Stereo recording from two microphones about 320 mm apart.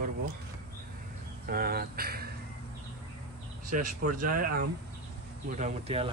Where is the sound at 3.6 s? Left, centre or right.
Right.